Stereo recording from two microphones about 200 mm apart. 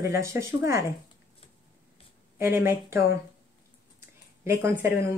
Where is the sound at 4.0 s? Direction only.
10° right (ahead or behind).